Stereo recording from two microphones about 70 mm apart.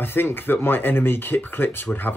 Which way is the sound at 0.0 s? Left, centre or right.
Left.